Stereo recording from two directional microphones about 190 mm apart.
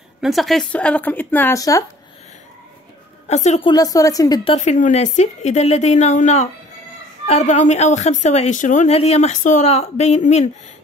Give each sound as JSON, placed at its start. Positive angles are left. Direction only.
{"t": 0.2, "sound": "a woman's voice", "side_deg": 0}
{"t": 3.3, "sound": "speech", "side_deg": 35}
{"t": 3.7, "sound": "speech", "side_deg": 20}
{"t": 4.6, "sound": "speech", "side_deg": 40}